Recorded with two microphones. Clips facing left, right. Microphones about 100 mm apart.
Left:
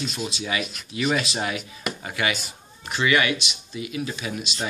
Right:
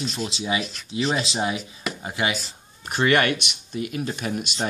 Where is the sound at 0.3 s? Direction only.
30° right (ahead or behind).